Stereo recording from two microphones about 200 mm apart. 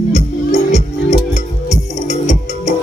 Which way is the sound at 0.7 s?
35° left (ahead or behind).